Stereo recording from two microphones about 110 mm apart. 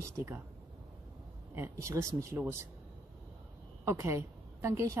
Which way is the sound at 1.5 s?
25° right (ahead or behind).